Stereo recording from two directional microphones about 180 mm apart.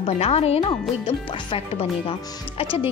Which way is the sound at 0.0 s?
35° left (ahead or behind).